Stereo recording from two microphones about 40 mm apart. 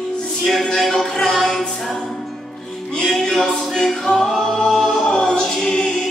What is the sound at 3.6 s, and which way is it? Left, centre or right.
Singing, centre.